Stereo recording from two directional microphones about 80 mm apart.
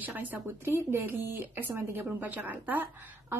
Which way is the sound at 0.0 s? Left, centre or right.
Right.